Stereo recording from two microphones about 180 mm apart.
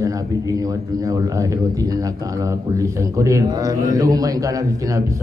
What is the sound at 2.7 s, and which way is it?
A man's voice, 15° right (ahead or behind).